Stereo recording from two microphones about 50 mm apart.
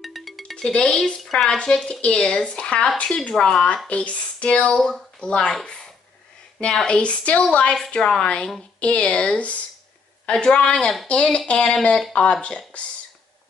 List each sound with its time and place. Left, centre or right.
0.0 s music: centre
0.6 s speech: centre
1.9 s speech: left
6.6 s speech: centre